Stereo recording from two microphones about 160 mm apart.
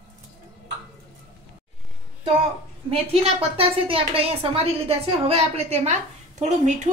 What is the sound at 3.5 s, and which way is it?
A woman's voice, 35° right (ahead or behind).